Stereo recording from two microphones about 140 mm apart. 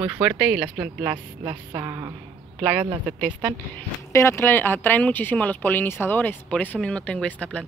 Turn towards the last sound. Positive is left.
turn(degrees=10)  # may be behind; listen again after turning